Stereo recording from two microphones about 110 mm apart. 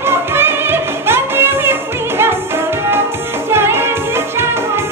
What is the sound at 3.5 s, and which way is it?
Music, 20° right (ahead or behind).